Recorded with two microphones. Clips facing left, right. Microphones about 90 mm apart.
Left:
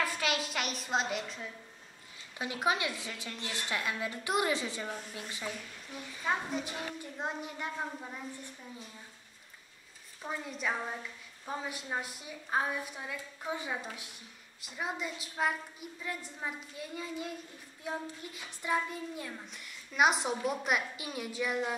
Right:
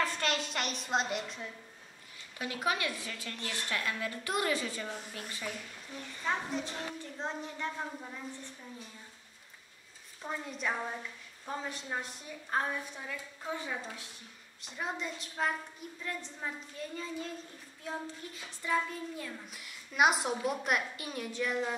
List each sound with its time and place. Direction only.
0.0 s a woman's voice: 5° left (ahead or behind)
2.3 s a woman's voice: 20° left (ahead or behind)
10.2 s a woman's voice: centre (ahead or behind); by 19.4 s 20° left (ahead or behind)
19.5 s a woman's voice: 5° right (ahead or behind)